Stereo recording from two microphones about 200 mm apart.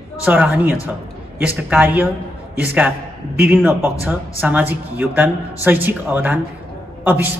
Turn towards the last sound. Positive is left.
turn(degrees=-10)  # may be behind; listen again after turning